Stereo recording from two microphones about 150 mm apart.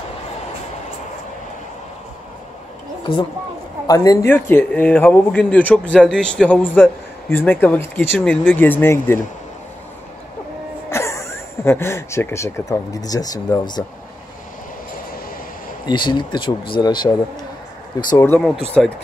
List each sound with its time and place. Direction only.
3.8 s a man's voice: 25° left (ahead or behind)
4.3 s a man's voice: 15° left (ahead or behind)
10.9 s speech: 20° left (ahead or behind)
15.8 s speech: 30° left (ahead or behind)
18.1 s a man's voice: 15° left (ahead or behind)
18.4 s speech: 5° left (ahead or behind)